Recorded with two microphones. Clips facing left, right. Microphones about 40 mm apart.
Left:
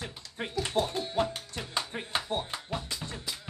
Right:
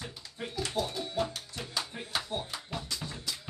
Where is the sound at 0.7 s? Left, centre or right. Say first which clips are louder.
Left 5 dB; left.